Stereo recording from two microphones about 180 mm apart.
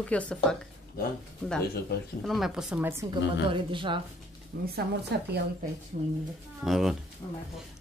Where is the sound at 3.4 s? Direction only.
25° right (ahead or behind).